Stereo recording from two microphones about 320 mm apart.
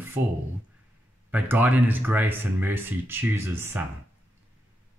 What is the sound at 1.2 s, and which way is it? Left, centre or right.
Speech, centre.